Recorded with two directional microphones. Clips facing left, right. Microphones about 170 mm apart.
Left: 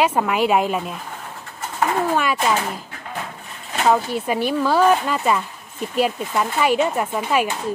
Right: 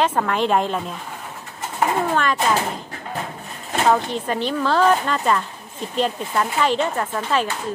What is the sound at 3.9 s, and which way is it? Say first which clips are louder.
Speech: left 1 dB; 5° left (ahead or behind).